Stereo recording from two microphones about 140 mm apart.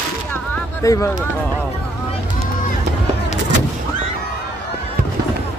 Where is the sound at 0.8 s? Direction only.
25° left (ahead or behind).